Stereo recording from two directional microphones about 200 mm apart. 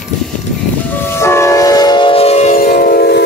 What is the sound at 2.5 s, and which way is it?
Train, 45° left (ahead or behind).